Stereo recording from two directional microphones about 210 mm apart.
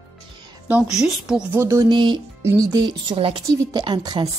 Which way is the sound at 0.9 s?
Centre (ahead or behind).